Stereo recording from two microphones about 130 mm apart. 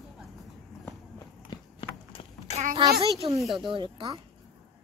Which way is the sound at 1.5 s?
40° left (ahead or behind).